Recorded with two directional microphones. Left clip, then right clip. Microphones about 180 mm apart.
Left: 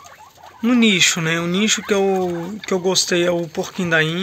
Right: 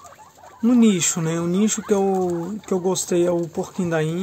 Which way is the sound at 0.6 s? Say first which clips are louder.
Left 4 dB; 15° right (ahead or behind).